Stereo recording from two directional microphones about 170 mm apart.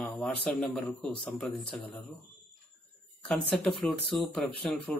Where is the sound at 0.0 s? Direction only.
Centre (ahead or behind).